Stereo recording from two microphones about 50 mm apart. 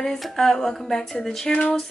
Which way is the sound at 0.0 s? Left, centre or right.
Centre.